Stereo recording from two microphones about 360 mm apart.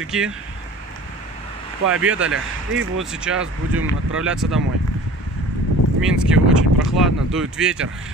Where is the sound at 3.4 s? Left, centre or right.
Right.